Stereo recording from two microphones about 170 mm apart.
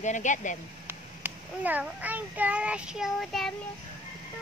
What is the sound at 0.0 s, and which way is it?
Speech, 45° left (ahead or behind).